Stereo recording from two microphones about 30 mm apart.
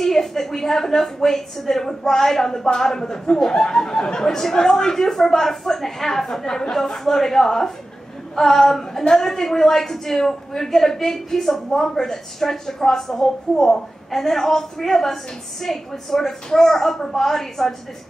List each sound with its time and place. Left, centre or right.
0.0 s a woman's voice: centre